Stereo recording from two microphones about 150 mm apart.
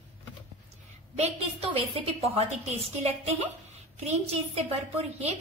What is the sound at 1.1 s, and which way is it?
A woman's voice, 45° right (ahead or behind).